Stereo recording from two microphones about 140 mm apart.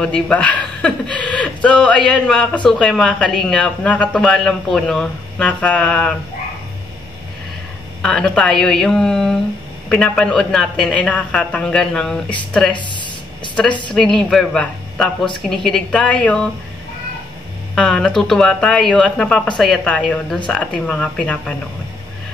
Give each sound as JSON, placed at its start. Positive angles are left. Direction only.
{"t": 0.0, "sound": "speech", "side_deg": 5}
{"t": 8.0, "sound": "speech", "side_deg": 5}
{"t": 12.7, "sound": "a sound", "side_deg": 35}
{"t": 13.9, "sound": "speech", "side_deg": 5}
{"t": 17.7, "sound": "speech", "side_deg": 5}